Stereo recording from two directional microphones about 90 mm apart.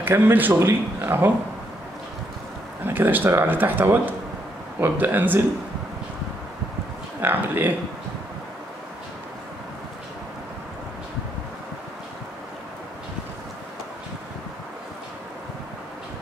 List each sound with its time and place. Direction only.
0.0 s speech: 25° right (ahead or behind)
2.8 s speech: 20° right (ahead or behind)
7.2 s speech: 20° right (ahead or behind)